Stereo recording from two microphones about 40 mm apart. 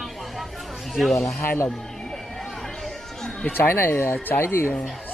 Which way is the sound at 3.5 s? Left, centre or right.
Left.